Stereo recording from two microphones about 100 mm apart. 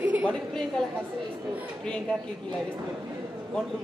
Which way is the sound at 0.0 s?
15° right (ahead or behind).